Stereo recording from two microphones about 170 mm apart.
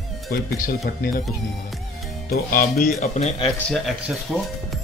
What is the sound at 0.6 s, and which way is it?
Speech, 65° left (ahead or behind).